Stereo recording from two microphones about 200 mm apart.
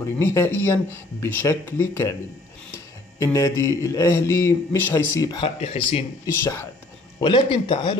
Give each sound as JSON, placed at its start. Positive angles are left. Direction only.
{"t": 0.2, "sound": "speech", "side_deg": 15}
{"t": 3.2, "sound": "speech", "side_deg": 15}
{"t": 5.4, "sound": "speech", "side_deg": 30}
{"t": 6.4, "sound": "speech", "side_deg": 15}
{"t": 7.2, "sound": "speech", "side_deg": 25}